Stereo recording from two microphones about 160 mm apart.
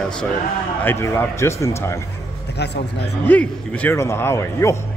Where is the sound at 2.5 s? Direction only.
90° left.